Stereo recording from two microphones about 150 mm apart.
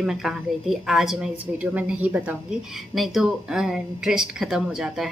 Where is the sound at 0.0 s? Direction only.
5° right (ahead or behind).